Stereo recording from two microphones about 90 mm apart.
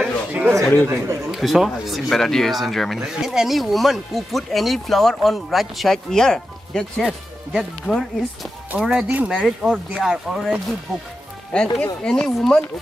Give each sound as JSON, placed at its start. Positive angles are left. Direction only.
{"t": 0.0, "sound": "a sound", "side_deg": -15}
{"t": 1.3, "sound": "speech", "side_deg": 0}
{"t": 9.0, "sound": "speech", "side_deg": -20}
{"t": 11.5, "sound": "speech", "side_deg": 10}